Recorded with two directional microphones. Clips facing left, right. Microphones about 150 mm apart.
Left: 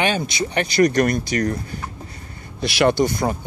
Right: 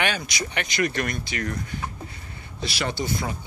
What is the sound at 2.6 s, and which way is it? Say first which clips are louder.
Speech: left 11 dB; 65° left (ahead or behind).